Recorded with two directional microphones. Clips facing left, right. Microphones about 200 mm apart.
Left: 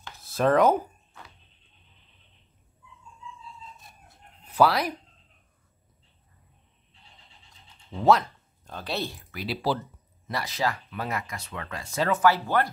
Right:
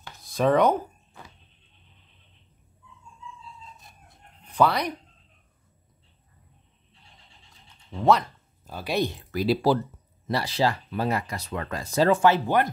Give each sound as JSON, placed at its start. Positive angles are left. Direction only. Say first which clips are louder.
{"t": 0.2, "sound": "speech", "louder": "even", "side_deg": 0}
{"t": 3.7, "sound": "chicken", "louder": "even", "side_deg": 0}
{"t": 7.9, "sound": "speech", "louder": "even", "side_deg": 0}
{"t": 9.3, "sound": "speech", "louder": "right 7 dB", "side_deg": -40}
{"t": 10.2, "sound": "speech", "louder": "right 4 dB", "side_deg": -30}